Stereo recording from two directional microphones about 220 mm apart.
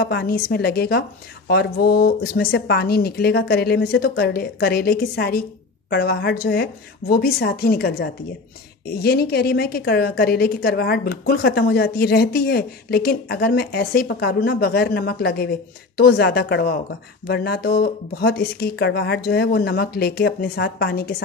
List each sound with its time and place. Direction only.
0.0 s a woman's voice: 45° left (ahead or behind)